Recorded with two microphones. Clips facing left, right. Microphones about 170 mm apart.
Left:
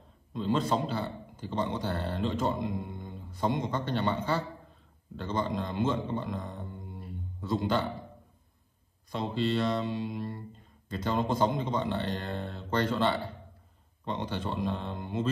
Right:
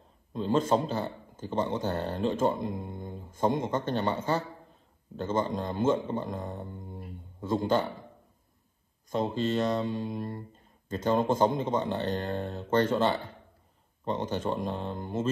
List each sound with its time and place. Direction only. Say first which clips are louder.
0.3 s a man's voice: right 3 dB; 45° right (ahead or behind)
9.1 s a man's voice: right 2 dB; 45° right (ahead or behind)